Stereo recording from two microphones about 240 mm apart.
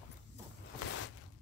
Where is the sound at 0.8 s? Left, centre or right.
Left.